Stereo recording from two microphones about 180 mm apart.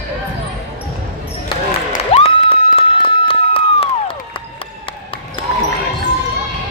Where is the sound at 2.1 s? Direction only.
30° left (ahead or behind).